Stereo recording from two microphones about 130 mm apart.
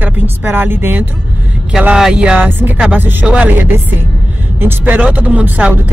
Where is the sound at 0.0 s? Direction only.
15° right (ahead or behind).